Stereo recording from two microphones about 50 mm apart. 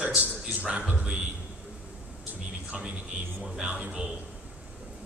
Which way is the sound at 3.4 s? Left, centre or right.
Right.